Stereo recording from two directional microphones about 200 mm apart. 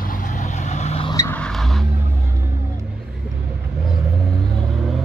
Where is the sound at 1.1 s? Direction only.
10° left (ahead or behind).